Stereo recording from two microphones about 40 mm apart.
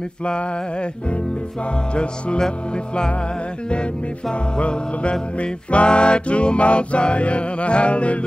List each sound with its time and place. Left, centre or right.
0.2 s music: left
2.0 s music: left
4.3 s music: left